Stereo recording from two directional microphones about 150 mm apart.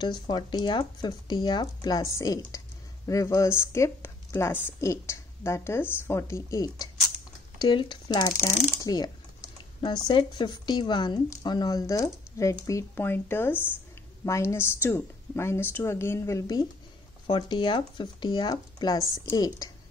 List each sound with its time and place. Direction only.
0.0 s a woman's voice: 30° left (ahead or behind)